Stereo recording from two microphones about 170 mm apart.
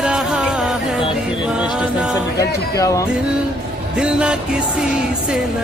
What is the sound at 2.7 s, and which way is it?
Music, 20° left (ahead or behind).